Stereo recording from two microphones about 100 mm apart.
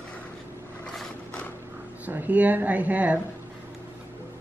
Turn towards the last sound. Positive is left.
turn(degrees=-15)  # may be behind; listen again after turning